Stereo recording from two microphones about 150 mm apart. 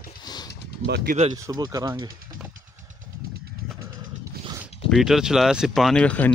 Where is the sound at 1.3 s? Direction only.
25° right (ahead or behind).